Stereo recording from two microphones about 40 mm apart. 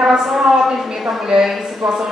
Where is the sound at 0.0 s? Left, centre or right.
Centre.